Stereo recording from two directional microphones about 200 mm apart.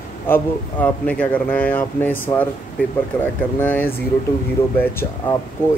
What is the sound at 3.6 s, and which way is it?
Speech, 10° left (ahead or behind).